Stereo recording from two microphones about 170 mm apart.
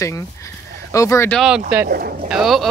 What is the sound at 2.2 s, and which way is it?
Speech, centre (ahead or behind).